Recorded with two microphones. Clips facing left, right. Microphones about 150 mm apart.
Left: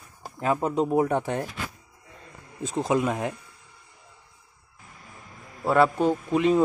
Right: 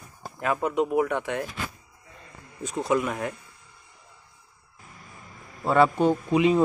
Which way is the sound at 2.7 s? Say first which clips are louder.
Left 1 dB; 25° left (ahead or behind).